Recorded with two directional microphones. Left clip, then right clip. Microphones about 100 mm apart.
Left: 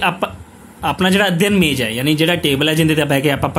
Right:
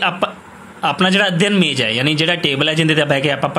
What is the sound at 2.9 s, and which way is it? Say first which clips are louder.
Speech: right 1 dB; 45° left (ahead or behind).